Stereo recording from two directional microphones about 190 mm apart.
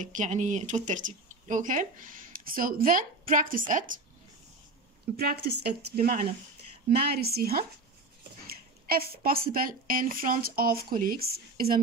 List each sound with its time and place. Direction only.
0.0 s speech: 40° right (ahead or behind)
5.1 s a woman's voice: 55° right (ahead or behind)